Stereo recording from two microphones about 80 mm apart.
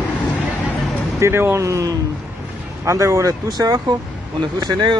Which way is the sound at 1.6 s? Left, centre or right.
Right.